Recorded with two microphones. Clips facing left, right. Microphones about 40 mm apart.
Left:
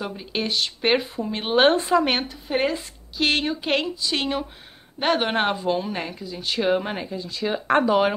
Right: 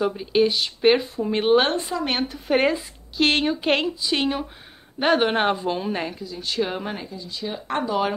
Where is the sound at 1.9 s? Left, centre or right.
Left.